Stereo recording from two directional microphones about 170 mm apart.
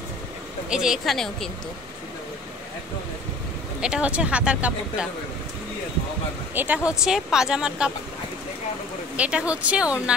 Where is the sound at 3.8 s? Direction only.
5° right (ahead or behind).